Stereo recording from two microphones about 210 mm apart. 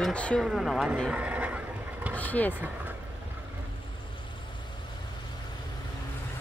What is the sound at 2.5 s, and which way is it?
Speech, 10° right (ahead or behind).